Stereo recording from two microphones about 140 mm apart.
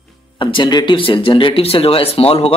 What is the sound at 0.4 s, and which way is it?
A man's voice, 35° left (ahead or behind).